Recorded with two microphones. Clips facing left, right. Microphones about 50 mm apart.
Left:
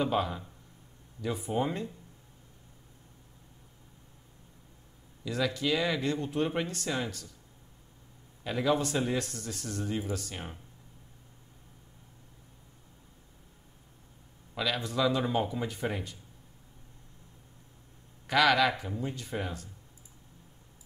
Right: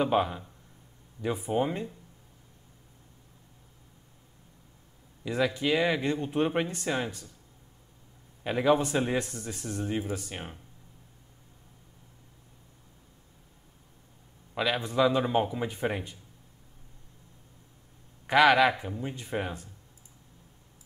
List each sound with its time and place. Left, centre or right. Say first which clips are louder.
0.0 s speech: right 3 dB; centre
1.4 s speech: right 2 dB; centre
5.2 s speech: right 3 dB; right
8.5 s speech: right 4 dB; right
14.5 s speech: right 3 dB; right
18.2 s speech: right 4 dB; right